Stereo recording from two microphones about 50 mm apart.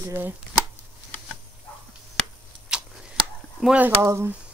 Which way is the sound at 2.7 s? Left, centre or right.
Centre.